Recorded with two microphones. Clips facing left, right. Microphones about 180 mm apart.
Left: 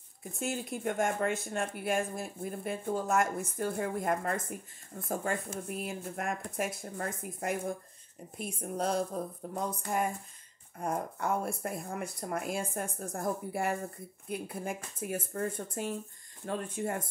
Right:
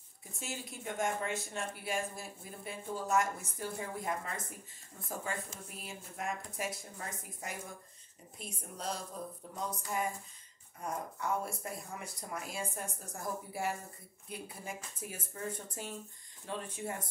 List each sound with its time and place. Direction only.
0.2 s speech: 55° left (ahead or behind)